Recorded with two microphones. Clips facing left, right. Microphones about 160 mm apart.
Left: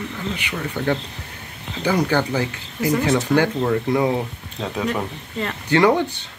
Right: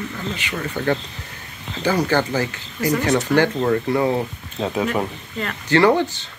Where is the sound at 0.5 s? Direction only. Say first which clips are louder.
Right 1 dB; 5° left (ahead or behind).